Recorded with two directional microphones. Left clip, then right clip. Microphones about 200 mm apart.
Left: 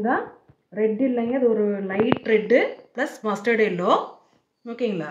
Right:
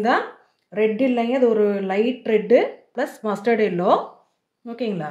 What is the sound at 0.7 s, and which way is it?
A woman's voice, 55° right (ahead or behind).